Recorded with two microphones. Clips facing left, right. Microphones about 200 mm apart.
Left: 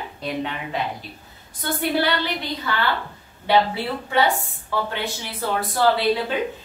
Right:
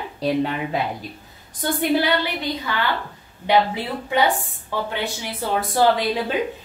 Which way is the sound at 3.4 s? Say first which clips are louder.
Even; 15° right (ahead or behind).